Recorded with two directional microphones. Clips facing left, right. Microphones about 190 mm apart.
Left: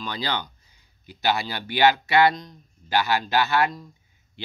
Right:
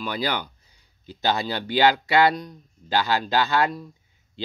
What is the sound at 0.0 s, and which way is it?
Speech, 10° right (ahead or behind).